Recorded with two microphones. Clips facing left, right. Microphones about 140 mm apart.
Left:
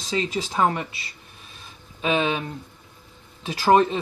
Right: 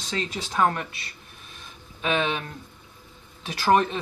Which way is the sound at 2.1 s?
5° left (ahead or behind).